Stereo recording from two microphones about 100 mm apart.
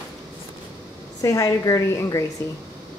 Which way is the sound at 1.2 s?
35° left (ahead or behind).